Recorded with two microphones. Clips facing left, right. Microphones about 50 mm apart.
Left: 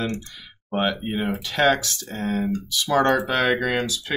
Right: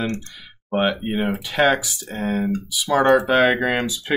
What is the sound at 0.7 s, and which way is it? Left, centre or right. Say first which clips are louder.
Speech: right 3 dB; centre.